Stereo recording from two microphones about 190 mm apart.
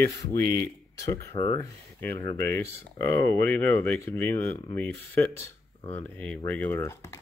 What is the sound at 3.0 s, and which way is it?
Speech, 55° right (ahead or behind).